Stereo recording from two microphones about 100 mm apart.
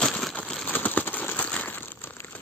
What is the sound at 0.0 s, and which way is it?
Crumpling, 5° left (ahead or behind).